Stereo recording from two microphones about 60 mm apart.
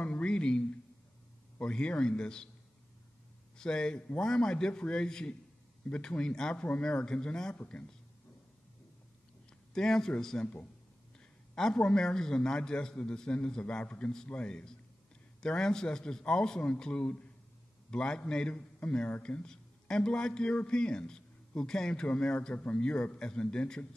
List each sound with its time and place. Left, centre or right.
0.0 s a sound: left
1.6 s a man's voice: centre
3.5 s a man's voice: centre
7.5 s speech: left
9.8 s a man's voice: centre
10.4 s speech: left
11.1 s a man's voice: centre